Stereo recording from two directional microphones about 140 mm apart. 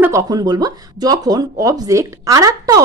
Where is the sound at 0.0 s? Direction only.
25° right (ahead or behind).